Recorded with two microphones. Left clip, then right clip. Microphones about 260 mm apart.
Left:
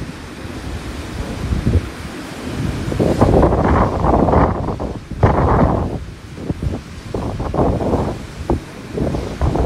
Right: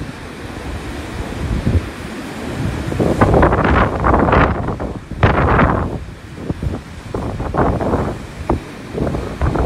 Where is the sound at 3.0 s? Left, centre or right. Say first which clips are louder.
Right 1 dB; left.